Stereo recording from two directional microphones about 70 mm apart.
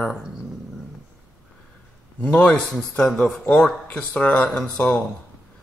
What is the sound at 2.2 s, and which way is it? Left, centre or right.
Speech, centre.